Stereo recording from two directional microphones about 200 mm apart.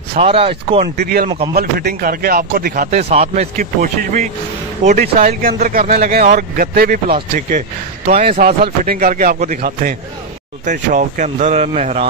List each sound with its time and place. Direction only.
0.1 s speech: 30° right (ahead or behind)
1.5 s a man's voice: 50° right (ahead or behind); by 3.4 s 30° right (ahead or behind)
3.5 s a man's voice: 40° right (ahead or behind)